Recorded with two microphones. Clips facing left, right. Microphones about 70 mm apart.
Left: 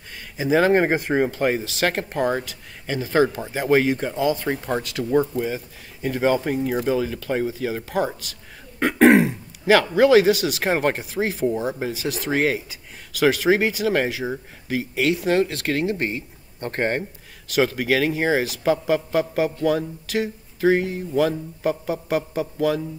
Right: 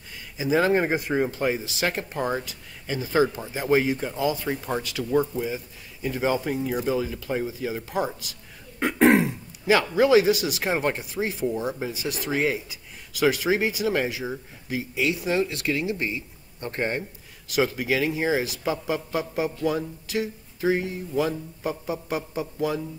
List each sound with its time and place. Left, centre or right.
0.1 s a man's voice: left